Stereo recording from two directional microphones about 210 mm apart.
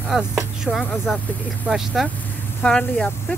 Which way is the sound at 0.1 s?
Centre (ahead or behind).